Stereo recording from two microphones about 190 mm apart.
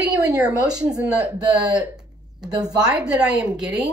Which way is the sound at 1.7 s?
5° right (ahead or behind).